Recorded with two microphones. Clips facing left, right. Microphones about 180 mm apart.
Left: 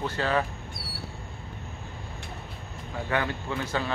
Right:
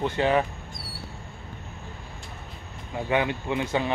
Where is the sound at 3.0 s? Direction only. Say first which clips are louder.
Right 4 dB; 20° right (ahead or behind).